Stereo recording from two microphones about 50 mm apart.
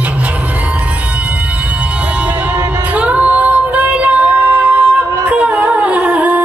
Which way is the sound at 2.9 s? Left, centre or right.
Right.